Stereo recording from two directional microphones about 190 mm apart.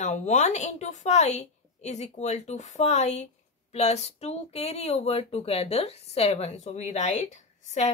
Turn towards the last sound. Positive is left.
turn(degrees=35)  # may be behind; listen again after turning